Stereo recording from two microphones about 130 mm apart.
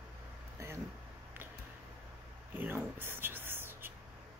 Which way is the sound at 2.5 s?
15° right (ahead or behind).